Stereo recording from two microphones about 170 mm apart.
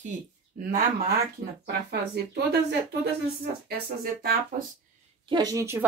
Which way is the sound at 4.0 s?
60° right (ahead or behind).